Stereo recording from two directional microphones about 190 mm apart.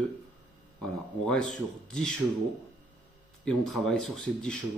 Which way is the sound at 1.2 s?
5° left (ahead or behind).